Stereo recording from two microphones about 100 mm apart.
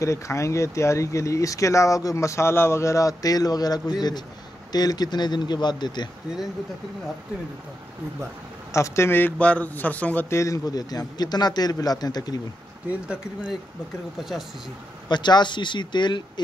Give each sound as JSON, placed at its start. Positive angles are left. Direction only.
{"t": 0.0, "sound": "speech", "side_deg": 30}
{"t": 8.7, "sound": "a man's voice", "side_deg": 30}
{"t": 10.3, "sound": "speech", "side_deg": 35}
{"t": 13.1, "sound": "speech", "side_deg": -10}
{"t": 15.0, "sound": "speech", "side_deg": 45}